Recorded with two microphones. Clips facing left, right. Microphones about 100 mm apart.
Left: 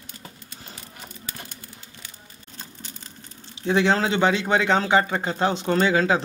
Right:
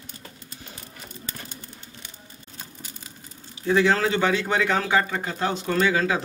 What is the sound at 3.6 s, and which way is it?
A man's voice, 25° left (ahead or behind).